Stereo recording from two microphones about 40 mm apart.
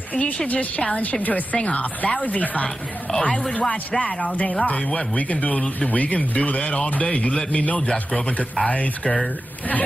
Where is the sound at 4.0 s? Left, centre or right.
Left.